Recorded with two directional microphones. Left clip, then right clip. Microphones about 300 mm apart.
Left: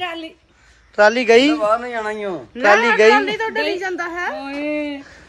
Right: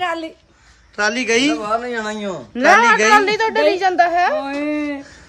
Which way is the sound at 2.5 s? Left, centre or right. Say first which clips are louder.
Right 2 dB; right.